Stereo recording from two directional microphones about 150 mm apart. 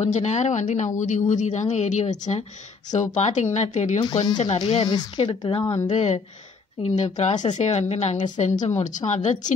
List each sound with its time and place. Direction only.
0.0 s a woman's voice: 50° left (ahead or behind)
4.0 s a woman's voice: 30° left (ahead or behind)
5.9 s a woman's voice: 45° left (ahead or behind)